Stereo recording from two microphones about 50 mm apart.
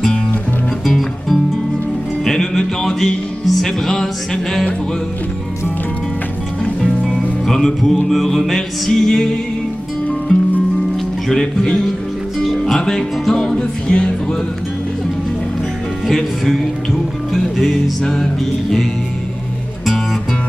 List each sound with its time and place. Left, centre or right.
0.8 s music: centre
7.4 s music: centre
10.3 s music: centre
13.8 s music: left
16.1 s music: centre